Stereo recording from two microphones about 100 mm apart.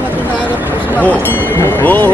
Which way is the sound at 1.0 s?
20° left (ahead or behind).